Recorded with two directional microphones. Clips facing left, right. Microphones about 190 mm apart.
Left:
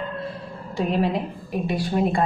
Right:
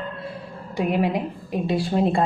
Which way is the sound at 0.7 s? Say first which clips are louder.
Right 1 dB; 15° right (ahead or behind).